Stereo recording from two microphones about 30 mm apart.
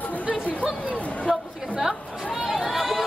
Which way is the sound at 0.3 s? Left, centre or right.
Left.